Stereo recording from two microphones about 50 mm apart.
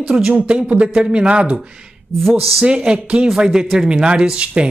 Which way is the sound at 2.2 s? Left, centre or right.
Centre.